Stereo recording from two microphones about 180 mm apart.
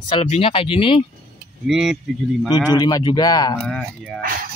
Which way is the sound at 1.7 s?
Centre (ahead or behind).